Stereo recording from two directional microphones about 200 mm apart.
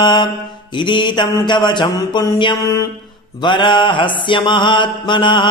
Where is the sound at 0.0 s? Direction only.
20° left (ahead or behind).